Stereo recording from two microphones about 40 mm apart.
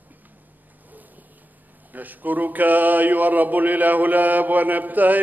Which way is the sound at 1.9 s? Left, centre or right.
Right.